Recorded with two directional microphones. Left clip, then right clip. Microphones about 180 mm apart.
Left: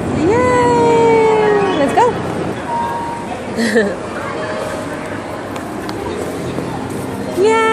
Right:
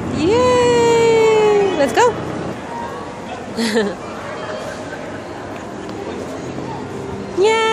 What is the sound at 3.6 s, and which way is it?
Chatter, 10° right (ahead or behind).